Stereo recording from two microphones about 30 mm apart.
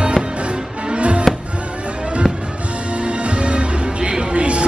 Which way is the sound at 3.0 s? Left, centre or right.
Right.